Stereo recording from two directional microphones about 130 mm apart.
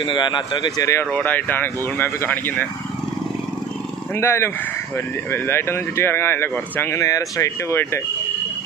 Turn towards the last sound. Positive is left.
turn(degrees=20)  # may be behind; listen again after turning